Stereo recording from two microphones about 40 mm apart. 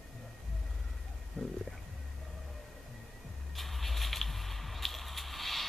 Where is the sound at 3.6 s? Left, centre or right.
Centre.